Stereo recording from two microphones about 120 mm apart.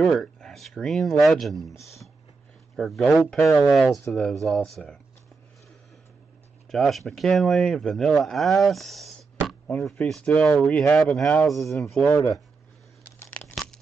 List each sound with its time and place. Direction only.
0.0 s speech: centre (ahead or behind)
6.7 s speech: centre (ahead or behind)
12.1 s speech: 25° left (ahead or behind)
13.3 s crumpling: 10° left (ahead or behind)